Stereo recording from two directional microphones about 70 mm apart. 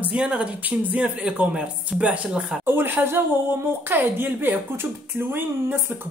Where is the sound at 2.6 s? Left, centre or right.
Right.